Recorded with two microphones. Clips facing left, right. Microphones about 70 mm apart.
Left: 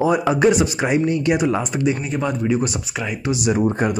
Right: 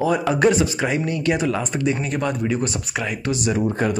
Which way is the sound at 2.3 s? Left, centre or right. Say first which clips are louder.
Left 2 dB; centre.